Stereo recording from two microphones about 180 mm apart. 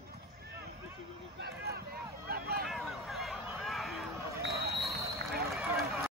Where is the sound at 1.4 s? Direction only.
60° right (ahead or behind).